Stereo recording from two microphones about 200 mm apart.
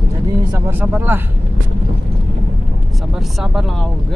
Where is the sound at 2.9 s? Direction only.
Centre (ahead or behind).